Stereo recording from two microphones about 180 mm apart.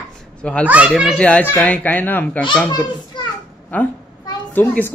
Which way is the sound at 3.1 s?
25° left (ahead or behind).